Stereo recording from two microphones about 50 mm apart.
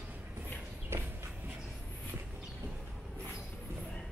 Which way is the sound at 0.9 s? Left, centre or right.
Right.